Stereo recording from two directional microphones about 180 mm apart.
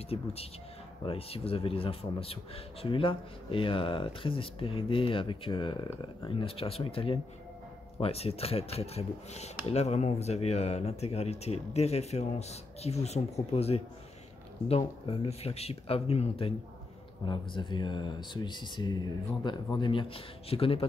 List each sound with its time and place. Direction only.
0.1 s speech: 35° left (ahead or behind)